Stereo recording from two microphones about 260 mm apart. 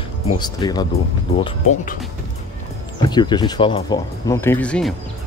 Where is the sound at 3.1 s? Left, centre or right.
Centre.